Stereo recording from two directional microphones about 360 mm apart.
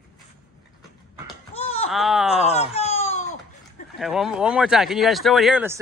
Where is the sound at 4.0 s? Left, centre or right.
Centre.